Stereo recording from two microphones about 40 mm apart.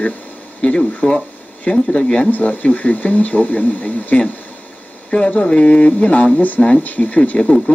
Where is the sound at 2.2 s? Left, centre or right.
Left.